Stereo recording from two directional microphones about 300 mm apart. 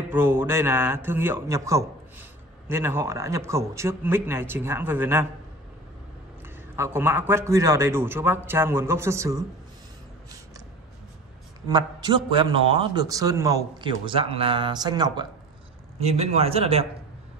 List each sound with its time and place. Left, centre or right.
0.1 s a man's voice: centre
6.8 s a man's voice: centre
11.7 s a man's voice: centre